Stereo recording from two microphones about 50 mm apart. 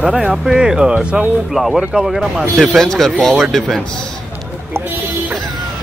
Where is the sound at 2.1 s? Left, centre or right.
Centre.